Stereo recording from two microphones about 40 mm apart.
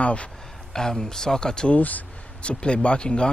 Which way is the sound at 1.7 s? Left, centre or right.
Left.